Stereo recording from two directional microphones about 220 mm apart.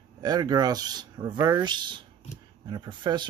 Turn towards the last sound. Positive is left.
turn(degrees=-20)  # may be behind; listen again after turning